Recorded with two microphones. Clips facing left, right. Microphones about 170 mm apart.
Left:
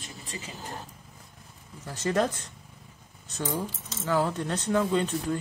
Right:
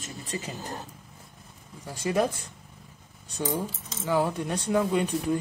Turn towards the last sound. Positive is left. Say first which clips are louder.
# right 1 dB
turn(degrees=-15)  # may be behind; listen again after turning